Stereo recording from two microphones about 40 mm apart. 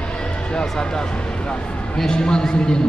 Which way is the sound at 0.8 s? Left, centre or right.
Left.